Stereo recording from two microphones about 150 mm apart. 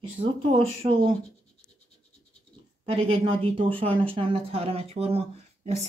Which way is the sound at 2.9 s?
40° right (ahead or behind).